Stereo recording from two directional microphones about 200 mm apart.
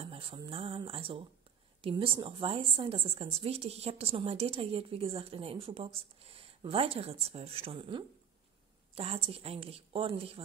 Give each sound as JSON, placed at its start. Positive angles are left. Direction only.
{"t": 0.0, "sound": "a woman's voice", "side_deg": -30}